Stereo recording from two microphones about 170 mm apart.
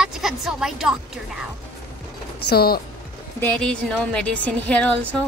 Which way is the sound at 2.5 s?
65° left (ahead or behind).